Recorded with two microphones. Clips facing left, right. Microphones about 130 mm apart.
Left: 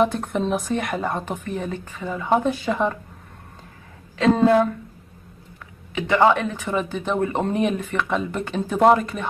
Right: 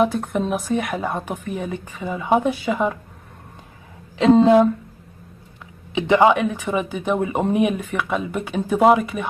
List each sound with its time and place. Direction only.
0.0 s speech: centre (ahead or behind)
4.2 s a woman's voice: 20° right (ahead or behind)
5.9 s speech: 15° right (ahead or behind)